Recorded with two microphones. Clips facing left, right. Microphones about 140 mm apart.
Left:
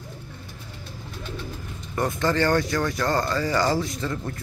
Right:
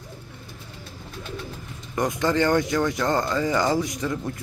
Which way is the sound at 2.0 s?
15° right (ahead or behind).